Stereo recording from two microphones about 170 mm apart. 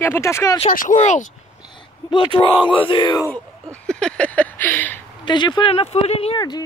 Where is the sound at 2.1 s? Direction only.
25° left (ahead or behind).